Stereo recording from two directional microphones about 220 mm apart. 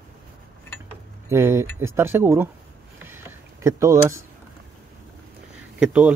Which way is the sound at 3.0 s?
10° right (ahead or behind).